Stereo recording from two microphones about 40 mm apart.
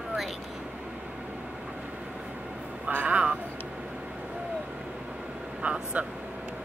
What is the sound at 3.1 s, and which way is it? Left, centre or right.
Speech, right.